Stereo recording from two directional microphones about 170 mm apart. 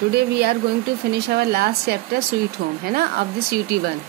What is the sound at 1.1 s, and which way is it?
Speech, 70° right (ahead or behind).